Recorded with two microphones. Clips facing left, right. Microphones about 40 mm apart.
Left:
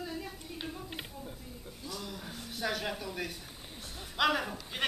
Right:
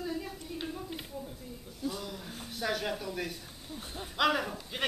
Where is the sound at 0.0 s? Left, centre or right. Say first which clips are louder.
Right 3 dB; centre.